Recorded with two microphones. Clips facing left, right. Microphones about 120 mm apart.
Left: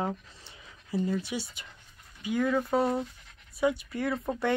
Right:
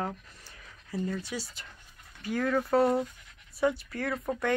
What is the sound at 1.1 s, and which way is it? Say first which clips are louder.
Speech: left 3 dB; 25° left (ahead or behind).